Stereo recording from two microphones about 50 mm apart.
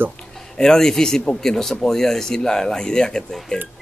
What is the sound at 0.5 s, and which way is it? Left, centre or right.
A man's voice, centre.